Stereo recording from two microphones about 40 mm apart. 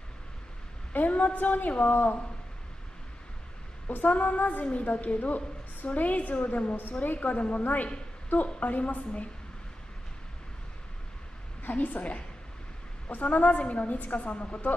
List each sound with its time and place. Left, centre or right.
0.9 s a woman's voice: left
4.0 s female singing: left
4.9 s a woman's voice: left
11.6 s a woman's voice: left